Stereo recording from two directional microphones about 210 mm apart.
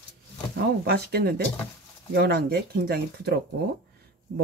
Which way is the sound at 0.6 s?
50° right (ahead or behind).